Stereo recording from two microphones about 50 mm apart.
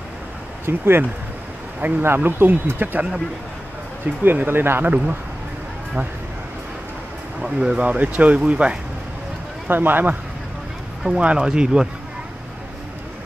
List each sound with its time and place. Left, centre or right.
0.7 s speech: right
1.8 s speech: right
4.2 s speech: right
7.4 s speech: centre
7.8 s speech: right
9.7 s speech: right
11.1 s speech: right